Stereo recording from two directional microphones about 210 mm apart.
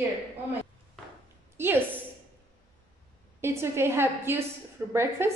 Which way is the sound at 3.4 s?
10° right (ahead or behind).